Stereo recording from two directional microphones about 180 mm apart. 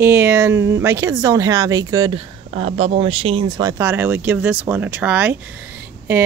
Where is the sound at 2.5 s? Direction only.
35° right (ahead or behind); by 5.3 s 10° right (ahead or behind).